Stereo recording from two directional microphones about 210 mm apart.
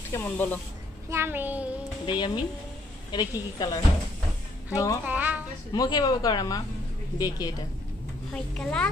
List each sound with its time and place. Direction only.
0.1 s speech: 10° left (ahead or behind)
1.1 s a child's voice: 10° right (ahead or behind)
2.0 s speech: 20° left (ahead or behind)
5.0 s a sound: 10° right (ahead or behind)
5.7 s speech: 20° left (ahead or behind)
8.3 s a child's voice: 5° left (ahead or behind)